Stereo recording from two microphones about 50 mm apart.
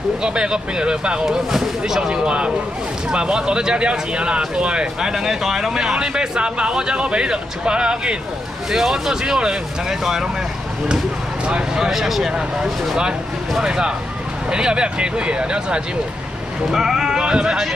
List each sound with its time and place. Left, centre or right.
0.2 s speech: centre
1.2 s speech: centre
5.1 s speech: centre
8.7 s speech: centre
11.4 s speech: right
11.8 s speech: centre
16.7 s speech: centre